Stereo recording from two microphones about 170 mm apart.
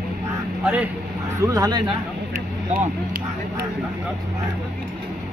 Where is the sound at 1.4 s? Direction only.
20° right (ahead or behind).